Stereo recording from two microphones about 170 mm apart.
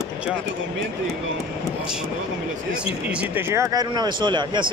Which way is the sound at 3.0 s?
10° right (ahead or behind).